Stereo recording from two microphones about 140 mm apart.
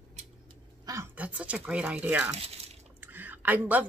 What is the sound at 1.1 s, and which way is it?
A woman's voice, 10° right (ahead or behind).